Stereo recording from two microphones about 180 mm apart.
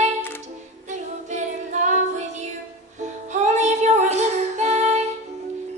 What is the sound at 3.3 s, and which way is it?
Child singing, 40° right (ahead or behind).